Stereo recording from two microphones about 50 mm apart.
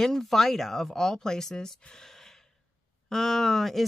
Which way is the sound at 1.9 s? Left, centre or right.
Centre.